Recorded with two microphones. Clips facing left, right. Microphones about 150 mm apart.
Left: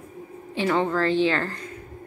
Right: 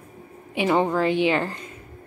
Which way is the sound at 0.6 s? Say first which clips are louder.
Right 2 dB; 15° right (ahead or behind).